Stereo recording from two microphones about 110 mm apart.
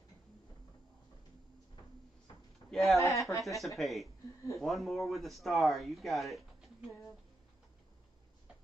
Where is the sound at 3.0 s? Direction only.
30° left (ahead or behind).